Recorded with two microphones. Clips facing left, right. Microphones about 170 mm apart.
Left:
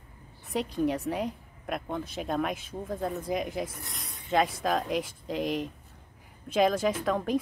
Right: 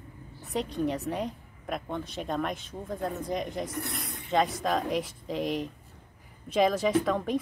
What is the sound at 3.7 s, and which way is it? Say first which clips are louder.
Speech: right 9 dB; 70° right (ahead or behind).